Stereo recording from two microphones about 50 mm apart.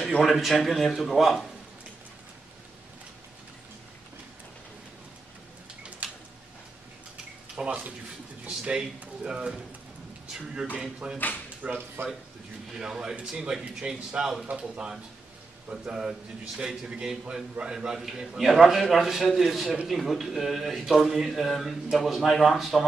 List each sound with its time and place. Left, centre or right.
0.2 s speech: centre
7.5 s a man's voice: right
11.1 s speech: left
11.6 s speech: right
12.7 s a man's voice: centre
18.5 s speech: centre